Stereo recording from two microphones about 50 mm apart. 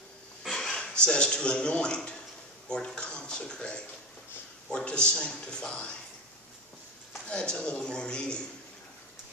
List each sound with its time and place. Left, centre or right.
0.4 s a sound: centre
0.9 s a man's voice: centre
7.2 s speech: centre